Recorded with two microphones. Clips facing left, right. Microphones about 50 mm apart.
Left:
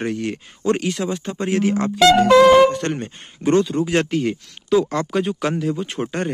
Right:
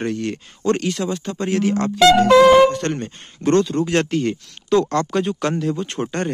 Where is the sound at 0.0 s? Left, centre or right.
Centre.